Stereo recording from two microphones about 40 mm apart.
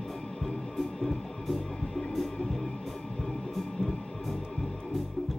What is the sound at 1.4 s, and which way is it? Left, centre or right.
Music, centre.